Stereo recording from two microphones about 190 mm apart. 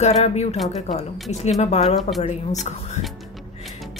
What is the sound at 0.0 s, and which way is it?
Speech, 35° left (ahead or behind).